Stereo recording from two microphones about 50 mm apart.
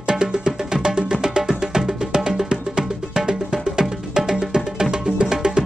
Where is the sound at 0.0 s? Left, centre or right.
Centre.